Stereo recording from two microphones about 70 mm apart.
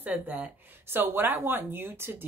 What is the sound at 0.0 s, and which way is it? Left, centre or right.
Speech, right.